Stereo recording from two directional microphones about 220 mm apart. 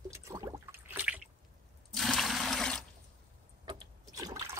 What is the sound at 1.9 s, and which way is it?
Toilet flush, centre (ahead or behind).